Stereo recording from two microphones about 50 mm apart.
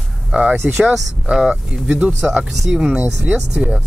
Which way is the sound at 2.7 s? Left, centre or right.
Centre.